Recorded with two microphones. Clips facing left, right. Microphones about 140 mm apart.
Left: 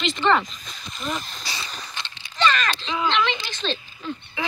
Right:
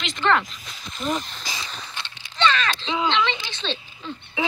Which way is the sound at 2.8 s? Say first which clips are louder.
Even; 20° right (ahead or behind).